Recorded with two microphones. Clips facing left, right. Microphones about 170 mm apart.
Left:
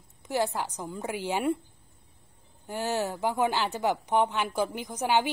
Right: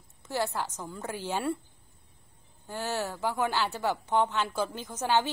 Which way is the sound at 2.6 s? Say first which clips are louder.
Left 3 dB; 15° left (ahead or behind).